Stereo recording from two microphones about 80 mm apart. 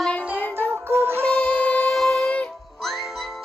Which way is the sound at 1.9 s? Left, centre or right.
Centre.